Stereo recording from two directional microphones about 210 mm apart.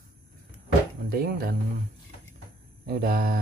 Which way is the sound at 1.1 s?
45° right (ahead or behind).